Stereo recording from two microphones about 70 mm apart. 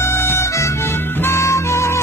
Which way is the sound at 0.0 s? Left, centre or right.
Left.